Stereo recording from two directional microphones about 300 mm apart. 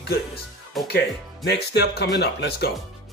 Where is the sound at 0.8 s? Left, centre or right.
Left.